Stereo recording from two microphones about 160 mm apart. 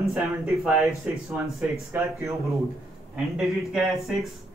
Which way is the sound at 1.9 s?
20° right (ahead or behind).